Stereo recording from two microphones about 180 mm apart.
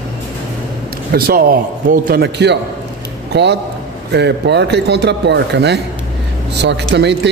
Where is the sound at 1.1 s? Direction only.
55° right (ahead or behind).